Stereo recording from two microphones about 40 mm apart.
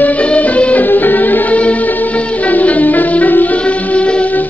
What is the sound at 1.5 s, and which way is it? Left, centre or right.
Music, left.